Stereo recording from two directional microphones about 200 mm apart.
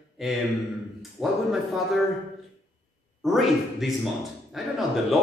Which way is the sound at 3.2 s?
Centre (ahead or behind).